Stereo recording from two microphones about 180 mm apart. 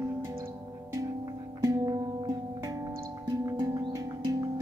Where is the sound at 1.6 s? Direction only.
20° right (ahead or behind).